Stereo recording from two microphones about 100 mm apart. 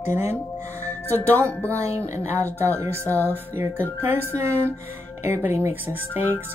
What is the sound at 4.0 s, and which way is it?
Speech, 25° right (ahead or behind).